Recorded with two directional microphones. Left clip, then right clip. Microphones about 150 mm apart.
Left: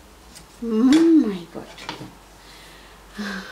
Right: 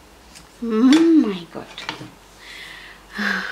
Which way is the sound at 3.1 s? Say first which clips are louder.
Right 9 dB; 30° right (ahead or behind).